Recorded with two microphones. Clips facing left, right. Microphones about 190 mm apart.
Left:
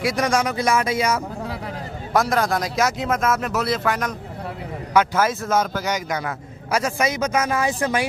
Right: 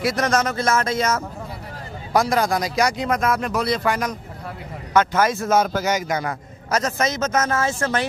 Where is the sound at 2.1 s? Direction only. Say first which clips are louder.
Right 1 dB; centre (ahead or behind).